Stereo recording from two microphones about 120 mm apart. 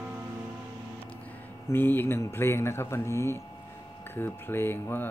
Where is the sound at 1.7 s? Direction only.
15° left (ahead or behind).